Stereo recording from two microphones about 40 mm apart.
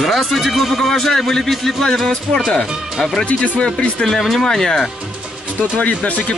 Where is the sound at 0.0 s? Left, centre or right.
Centre.